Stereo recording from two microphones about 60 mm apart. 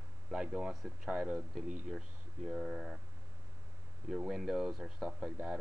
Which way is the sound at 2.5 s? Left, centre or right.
Centre.